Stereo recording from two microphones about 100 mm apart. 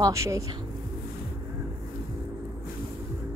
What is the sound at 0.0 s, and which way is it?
Speech, 30° right (ahead or behind).